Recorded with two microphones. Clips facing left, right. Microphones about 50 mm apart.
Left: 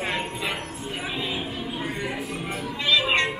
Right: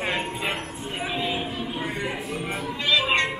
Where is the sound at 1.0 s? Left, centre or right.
Centre.